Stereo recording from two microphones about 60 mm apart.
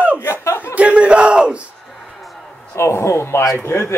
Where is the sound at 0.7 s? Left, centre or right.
Right.